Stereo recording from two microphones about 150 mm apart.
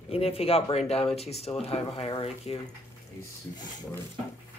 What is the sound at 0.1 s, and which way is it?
Speech, 40° left (ahead or behind).